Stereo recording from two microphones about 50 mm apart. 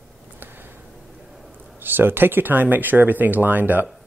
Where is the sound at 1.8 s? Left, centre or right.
Right.